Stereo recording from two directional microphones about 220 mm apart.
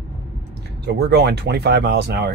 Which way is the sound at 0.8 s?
50° right (ahead or behind).